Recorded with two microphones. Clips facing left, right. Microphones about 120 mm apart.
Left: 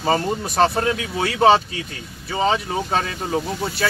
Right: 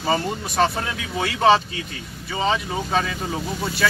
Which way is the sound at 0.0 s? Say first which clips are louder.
Left 3 dB; 35° left (ahead or behind).